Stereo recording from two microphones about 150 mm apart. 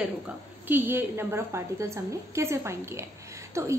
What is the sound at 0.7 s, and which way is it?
A woman's voice, 15° right (ahead or behind).